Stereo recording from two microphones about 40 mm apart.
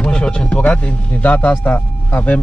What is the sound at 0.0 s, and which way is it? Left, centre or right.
A man's voice, left.